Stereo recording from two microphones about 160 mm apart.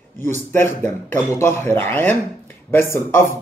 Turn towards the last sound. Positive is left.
turn(degrees=15)  # may be behind; listen again after turning